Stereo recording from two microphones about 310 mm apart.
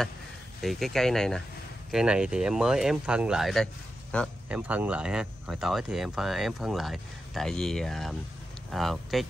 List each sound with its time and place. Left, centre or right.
0.6 s speech: centre